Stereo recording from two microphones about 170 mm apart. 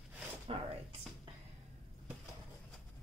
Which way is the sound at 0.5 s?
30° right (ahead or behind).